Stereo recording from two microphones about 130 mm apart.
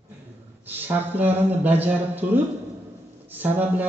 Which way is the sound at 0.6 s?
15° right (ahead or behind).